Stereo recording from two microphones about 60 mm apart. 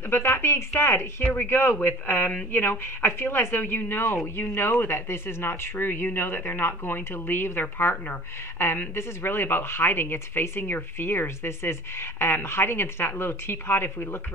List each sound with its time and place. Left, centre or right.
0.1 s speech: left
1.2 s a man's voice: left
1.5 s speech: left
8.5 s speech: left